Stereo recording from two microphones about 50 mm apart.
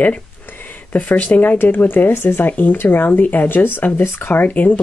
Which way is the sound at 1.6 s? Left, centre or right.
Left.